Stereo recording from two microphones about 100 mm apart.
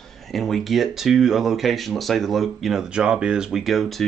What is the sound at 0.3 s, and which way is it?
Speech, centre (ahead or behind).